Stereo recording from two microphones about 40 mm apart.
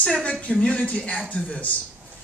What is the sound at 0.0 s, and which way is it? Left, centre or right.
Speech, left.